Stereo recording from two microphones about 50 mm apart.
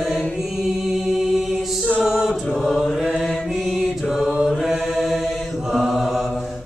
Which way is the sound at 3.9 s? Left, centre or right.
Centre.